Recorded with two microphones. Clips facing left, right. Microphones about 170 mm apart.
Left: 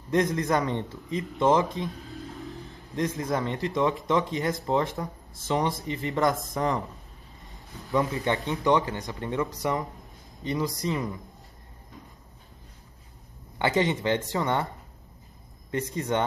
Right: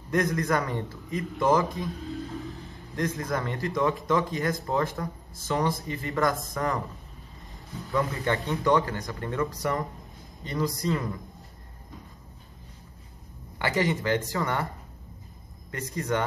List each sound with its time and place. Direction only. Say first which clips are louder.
0.1 s a man's voice: left 1 dB; 25° left (ahead or behind)
2.9 s a man's voice: left 1 dB; 20° left (ahead or behind)
7.9 s a man's voice: left 1 dB; 20° left (ahead or behind)
13.6 s a man's voice: left 2 dB; 25° left (ahead or behind)
15.7 s a man's voice: left 2 dB; 20° left (ahead or behind)